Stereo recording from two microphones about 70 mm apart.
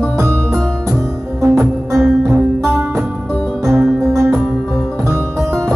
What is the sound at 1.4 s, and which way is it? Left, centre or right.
Music, right.